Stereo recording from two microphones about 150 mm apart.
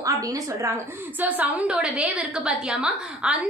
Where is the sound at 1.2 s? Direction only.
10° right (ahead or behind).